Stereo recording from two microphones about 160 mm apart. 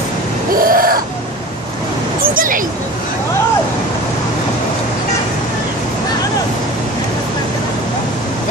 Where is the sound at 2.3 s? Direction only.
60° right (ahead or behind).